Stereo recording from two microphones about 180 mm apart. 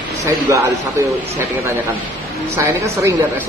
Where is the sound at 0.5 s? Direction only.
15° right (ahead or behind).